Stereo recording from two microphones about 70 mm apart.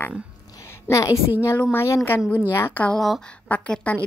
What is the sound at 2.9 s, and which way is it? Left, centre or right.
Speech, centre.